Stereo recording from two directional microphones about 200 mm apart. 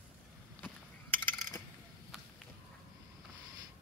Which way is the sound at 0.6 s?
10° left (ahead or behind).